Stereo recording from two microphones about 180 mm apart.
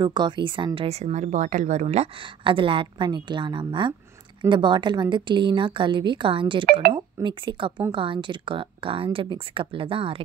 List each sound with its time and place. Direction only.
0.0 s speech: 25° right (ahead or behind)